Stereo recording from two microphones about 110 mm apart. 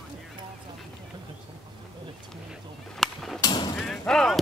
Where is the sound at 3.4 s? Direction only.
40° left (ahead or behind).